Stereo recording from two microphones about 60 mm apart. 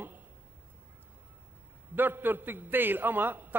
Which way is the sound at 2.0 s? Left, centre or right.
Right.